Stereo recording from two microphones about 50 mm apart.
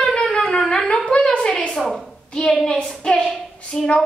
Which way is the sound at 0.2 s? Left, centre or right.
Centre.